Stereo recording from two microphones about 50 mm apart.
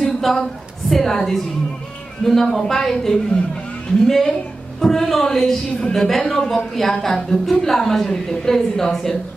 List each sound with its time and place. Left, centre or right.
0.0 s a woman's voice: centre
5.9 s a woman's voice: centre